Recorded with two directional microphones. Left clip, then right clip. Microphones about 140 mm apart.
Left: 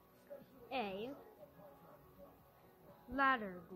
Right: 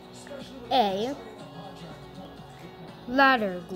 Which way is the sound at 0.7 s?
Centre (ahead or behind).